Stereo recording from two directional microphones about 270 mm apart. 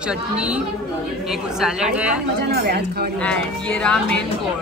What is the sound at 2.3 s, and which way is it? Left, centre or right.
Speech, right.